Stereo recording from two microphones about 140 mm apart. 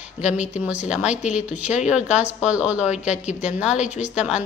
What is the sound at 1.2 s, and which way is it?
Speech, 60° left (ahead or behind).